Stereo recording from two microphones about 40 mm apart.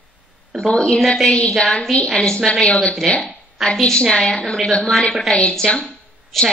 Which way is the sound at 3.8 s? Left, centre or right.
Centre.